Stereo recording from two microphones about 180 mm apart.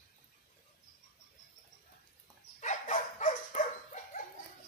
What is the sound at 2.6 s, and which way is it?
Dog, 40° left (ahead or behind).